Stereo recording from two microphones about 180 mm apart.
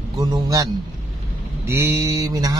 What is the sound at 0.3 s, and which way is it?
Speech, 20° right (ahead or behind).